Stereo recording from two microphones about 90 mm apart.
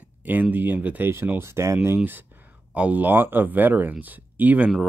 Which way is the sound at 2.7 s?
15° right (ahead or behind).